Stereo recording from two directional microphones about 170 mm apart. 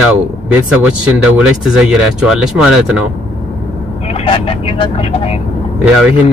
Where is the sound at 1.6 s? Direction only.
5° right (ahead or behind).